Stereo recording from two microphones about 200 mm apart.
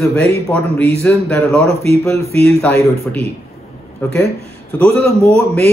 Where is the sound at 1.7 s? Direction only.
30° right (ahead or behind).